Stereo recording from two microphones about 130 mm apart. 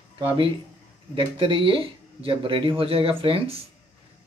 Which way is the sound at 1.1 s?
40° right (ahead or behind).